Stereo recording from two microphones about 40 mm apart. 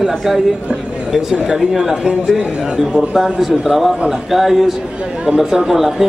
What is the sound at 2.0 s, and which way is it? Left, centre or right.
A man's voice, right.